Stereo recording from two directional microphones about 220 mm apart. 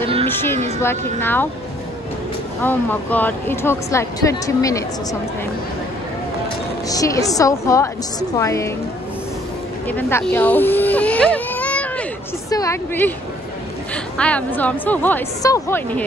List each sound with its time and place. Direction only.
0.0 s a sound: 25° right (ahead or behind)
0.3 s speech: 10° left (ahead or behind)
2.6 s speech: 10° left (ahead or behind)
6.9 s speech: 15° left (ahead or behind)
9.8 s speech: 10° left (ahead or behind)
14.1 s speech: 5° left (ahead or behind)